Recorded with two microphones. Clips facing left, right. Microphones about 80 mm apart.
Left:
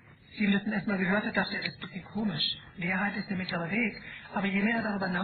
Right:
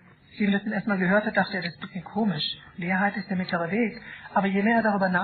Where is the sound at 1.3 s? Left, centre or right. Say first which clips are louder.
Right 6 dB; right.